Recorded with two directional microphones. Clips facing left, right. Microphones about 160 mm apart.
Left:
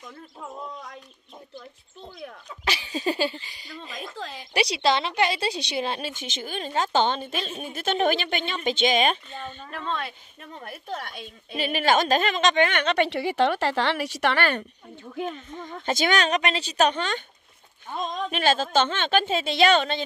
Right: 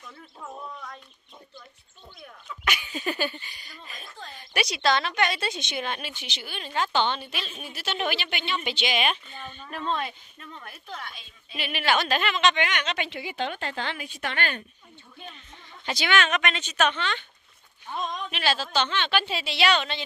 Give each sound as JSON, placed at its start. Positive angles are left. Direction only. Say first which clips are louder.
{"t": 2.4, "sound": "speech", "louder": "even", "side_deg": 30}
{"t": 3.9, "sound": "speech", "louder": "left 8 dB", "side_deg": 90}
{"t": 4.6, "sound": "a woman's voice", "louder": "left 2 dB", "side_deg": 30}
{"t": 6.1, "sound": "a woman's voice", "louder": "left 6 dB", "side_deg": 45}
{"t": 10.4, "sound": "a woman's voice", "louder": "left 4 dB", "side_deg": 45}
{"t": 11.5, "sound": "speech", "louder": "left 4 dB", "side_deg": 40}
{"t": 15.2, "sound": "a woman's voice", "louder": "left 13 dB", "side_deg": 45}
{"t": 18.3, "sound": "a woman's voice", "louder": "left 6 dB", "side_deg": 45}